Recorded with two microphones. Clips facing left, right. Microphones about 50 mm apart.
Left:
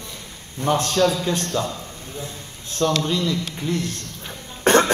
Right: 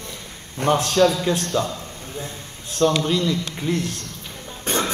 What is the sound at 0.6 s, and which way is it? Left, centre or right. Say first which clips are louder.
Speech: right 2 dB; right.